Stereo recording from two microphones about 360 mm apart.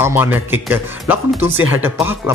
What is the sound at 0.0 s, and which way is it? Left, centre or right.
Speech, centre.